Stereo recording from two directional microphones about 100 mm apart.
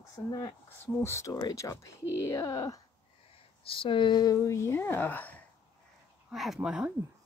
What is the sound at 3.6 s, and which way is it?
Speech, 65° left (ahead or behind).